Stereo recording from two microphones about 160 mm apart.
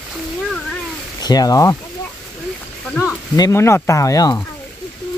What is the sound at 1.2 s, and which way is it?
Speech, 25° left (ahead or behind).